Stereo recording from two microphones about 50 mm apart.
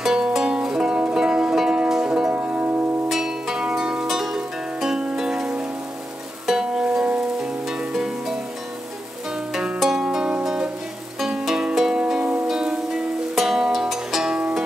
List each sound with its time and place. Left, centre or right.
0.0 s music: centre
2.3 s music: right
3.1 s music: centre
9.5 s music: centre